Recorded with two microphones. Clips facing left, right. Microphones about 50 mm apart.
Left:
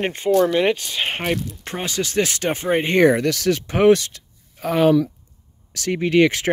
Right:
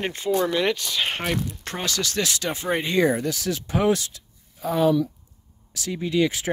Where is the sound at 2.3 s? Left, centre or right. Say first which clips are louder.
Left 5 dB; left.